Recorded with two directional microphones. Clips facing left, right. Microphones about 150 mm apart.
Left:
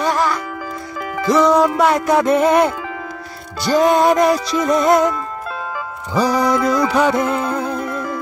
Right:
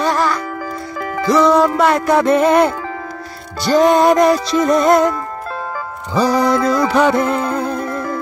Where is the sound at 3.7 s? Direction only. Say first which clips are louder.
Right 2 dB; 5° left (ahead or behind).